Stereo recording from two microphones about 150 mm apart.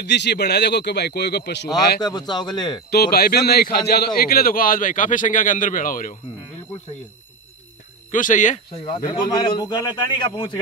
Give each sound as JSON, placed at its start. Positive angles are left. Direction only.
{"t": 0.3, "sound": "speech", "side_deg": 90}
{"t": 2.0, "sound": "speech", "side_deg": 30}
{"t": 2.9, "sound": "a man's voice", "side_deg": 90}
{"t": 8.1, "sound": "speech", "side_deg": 60}
{"t": 9.0, "sound": "a man's voice", "side_deg": 30}